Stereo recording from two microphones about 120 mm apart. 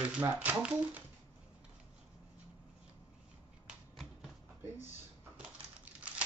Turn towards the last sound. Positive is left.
turn(degrees=-10)  # may be behind; listen again after turning